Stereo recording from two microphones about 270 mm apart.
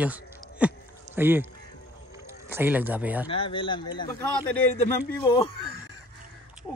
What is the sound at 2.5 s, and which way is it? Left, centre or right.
Speech, centre.